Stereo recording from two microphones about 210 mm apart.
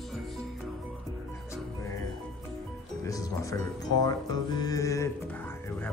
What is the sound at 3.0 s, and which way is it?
Speech, 15° left (ahead or behind).